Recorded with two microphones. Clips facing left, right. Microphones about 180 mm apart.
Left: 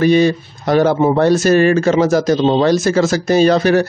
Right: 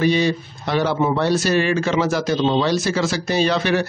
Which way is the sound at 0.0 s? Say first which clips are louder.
Left 6 dB; 50° left (ahead or behind).